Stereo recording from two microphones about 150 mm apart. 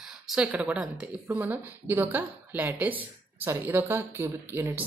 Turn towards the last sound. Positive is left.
turn(degrees=-15)  # may be behind; listen again after turning